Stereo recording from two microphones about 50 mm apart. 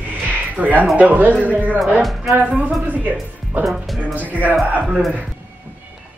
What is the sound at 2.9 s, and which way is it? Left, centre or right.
Speech, right.